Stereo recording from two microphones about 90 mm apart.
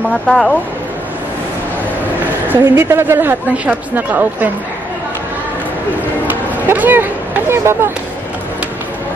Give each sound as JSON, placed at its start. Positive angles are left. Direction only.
{"t": 0.1, "sound": "speech", "side_deg": 5}
{"t": 2.4, "sound": "a woman's voice", "side_deg": -25}
{"t": 6.7, "sound": "speech", "side_deg": -20}